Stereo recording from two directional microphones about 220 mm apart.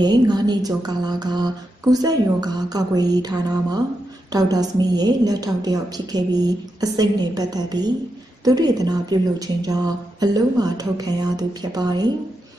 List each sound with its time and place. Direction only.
0.0 s a woman's voice: 20° right (ahead or behind)